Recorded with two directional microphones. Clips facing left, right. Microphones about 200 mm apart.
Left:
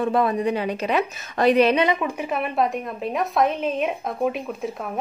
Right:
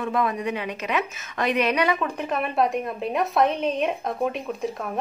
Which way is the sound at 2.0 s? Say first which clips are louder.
Left 1 dB; 10° left (ahead or behind).